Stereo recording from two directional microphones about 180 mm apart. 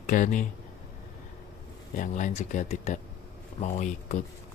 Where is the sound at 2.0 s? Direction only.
45° left (ahead or behind).